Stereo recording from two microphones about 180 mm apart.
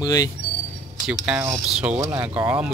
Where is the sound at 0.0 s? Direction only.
20° left (ahead or behind).